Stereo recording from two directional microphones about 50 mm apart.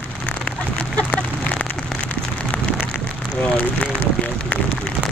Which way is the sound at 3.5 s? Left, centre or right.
Left.